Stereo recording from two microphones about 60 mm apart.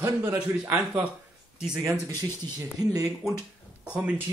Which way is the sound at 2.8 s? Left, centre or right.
Right.